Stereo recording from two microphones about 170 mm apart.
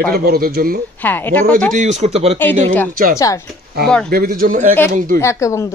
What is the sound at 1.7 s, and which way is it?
Speech, 40° right (ahead or behind).